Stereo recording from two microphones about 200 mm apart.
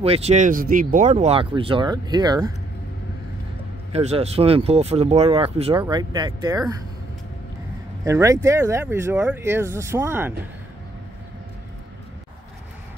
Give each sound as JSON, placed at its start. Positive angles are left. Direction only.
{"t": 0.0, "sound": "speech", "side_deg": -30}
{"t": 3.9, "sound": "speech", "side_deg": -30}
{"t": 8.0, "sound": "speech", "side_deg": -15}